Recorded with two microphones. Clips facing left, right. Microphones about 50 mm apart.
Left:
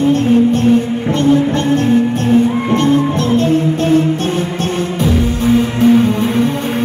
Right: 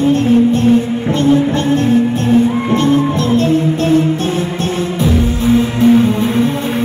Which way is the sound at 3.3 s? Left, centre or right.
Left.